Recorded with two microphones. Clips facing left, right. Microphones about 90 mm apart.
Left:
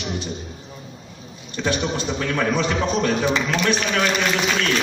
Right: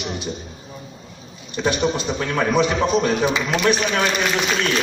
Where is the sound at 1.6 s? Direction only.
15° right (ahead or behind).